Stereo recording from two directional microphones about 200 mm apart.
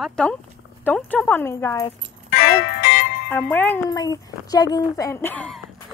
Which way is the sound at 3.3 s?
10° left (ahead or behind).